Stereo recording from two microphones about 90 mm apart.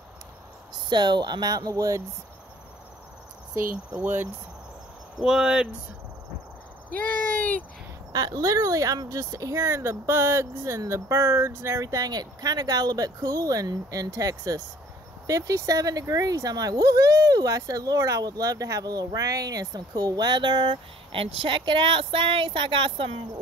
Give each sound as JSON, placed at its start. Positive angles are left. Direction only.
{"t": 0.8, "sound": "speech", "side_deg": -55}
{"t": 3.9, "sound": "speech", "side_deg": -20}
{"t": 5.2, "sound": "speech", "side_deg": -5}
{"t": 8.1, "sound": "speech", "side_deg": -40}